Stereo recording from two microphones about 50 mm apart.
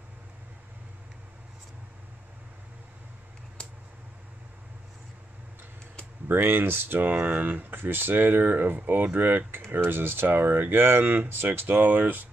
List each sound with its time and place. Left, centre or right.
6.2 s speech: right